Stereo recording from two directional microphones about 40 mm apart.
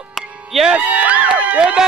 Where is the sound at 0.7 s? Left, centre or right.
Right.